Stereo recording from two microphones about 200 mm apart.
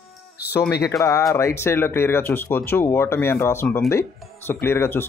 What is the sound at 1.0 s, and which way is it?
Speech, 15° left (ahead or behind).